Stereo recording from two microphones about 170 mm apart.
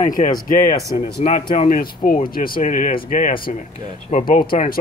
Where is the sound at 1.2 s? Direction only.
40° left (ahead or behind).